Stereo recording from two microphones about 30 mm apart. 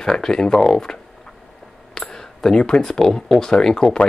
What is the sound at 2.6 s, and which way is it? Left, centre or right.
Speech, left.